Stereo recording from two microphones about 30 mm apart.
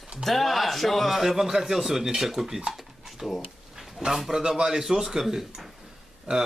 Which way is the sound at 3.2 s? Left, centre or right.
Centre.